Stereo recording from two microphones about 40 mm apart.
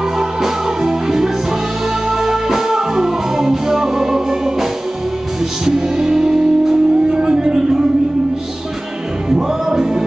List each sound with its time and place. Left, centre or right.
0.2 s music: centre
5.7 s music: centre
9.3 s music: centre